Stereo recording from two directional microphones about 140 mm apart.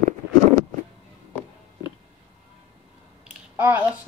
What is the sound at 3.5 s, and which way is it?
Speech, 15° right (ahead or behind).